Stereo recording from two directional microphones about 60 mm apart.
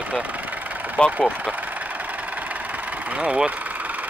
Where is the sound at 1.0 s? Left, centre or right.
Centre.